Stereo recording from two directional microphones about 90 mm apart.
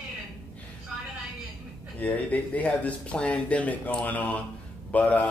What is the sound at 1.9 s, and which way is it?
Speech, 20° left (ahead or behind).